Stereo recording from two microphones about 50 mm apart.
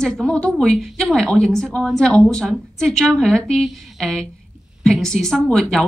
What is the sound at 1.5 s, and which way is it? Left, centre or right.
A woman's voice, centre.